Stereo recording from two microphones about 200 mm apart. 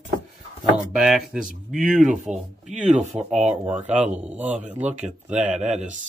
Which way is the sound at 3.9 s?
35° right (ahead or behind).